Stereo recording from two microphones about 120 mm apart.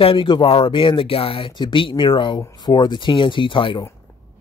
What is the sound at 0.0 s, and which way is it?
A man's voice, 45° left (ahead or behind).